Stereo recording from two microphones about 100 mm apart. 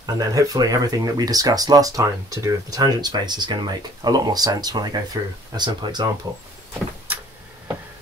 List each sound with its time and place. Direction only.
0.0 s speech: 35° right (ahead or behind)